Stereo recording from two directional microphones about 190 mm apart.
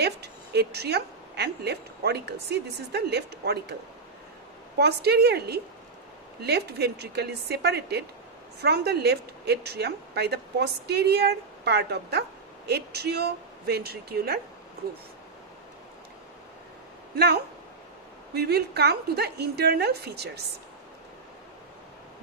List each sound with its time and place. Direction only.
0.0 s a woman's voice: 60° right (ahead or behind)
4.7 s speech: 60° right (ahead or behind)
18.3 s speech: 60° right (ahead or behind)